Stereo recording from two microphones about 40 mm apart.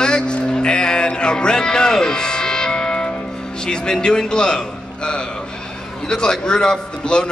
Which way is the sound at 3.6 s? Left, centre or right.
Centre.